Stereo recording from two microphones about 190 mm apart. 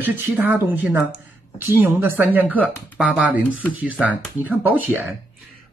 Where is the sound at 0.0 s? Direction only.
10° right (ahead or behind).